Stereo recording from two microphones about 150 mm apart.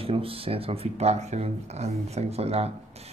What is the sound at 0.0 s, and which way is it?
A man's voice, 40° right (ahead or behind).